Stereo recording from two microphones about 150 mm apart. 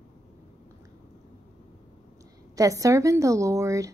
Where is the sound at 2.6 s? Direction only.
20° right (ahead or behind).